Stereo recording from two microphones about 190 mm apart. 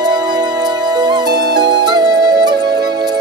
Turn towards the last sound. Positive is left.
turn(degrees=-20)  # may be behind; listen again after turning